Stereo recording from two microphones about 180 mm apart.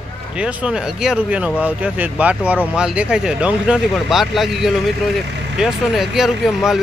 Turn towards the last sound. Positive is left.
turn(degrees=0)  # may be behind; listen again after turning